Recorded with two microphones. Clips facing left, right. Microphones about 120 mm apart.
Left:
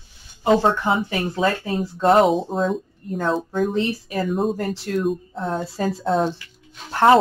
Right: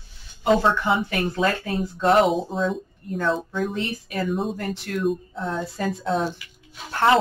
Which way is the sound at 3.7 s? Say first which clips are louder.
Left 5 dB; 40° left (ahead or behind).